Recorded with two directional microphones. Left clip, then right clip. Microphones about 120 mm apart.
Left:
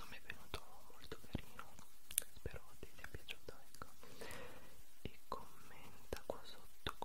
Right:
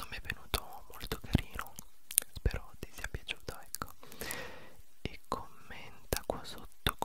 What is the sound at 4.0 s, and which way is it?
Whispering, 20° right (ahead or behind).